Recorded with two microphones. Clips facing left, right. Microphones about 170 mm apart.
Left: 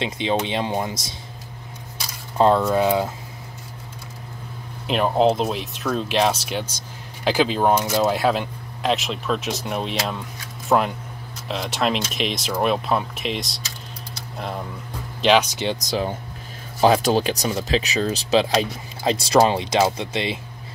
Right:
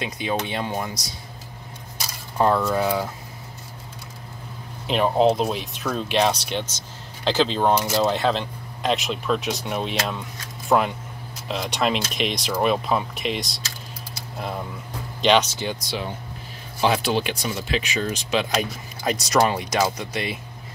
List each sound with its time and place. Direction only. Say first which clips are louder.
0.0 s speech: left 3 dB; 25° left (ahead or behind)
2.3 s speech: left 3 dB; 20° left (ahead or behind)
4.8 s speech: even; centre (ahead or behind)
15.5 s speech: left 4 dB; 25° left (ahead or behind)
15.9 s speech: left 5 dB; 40° left (ahead or behind); by 20.3 s 25° left (ahead or behind)